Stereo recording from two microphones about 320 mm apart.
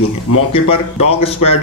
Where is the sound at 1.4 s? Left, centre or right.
Left.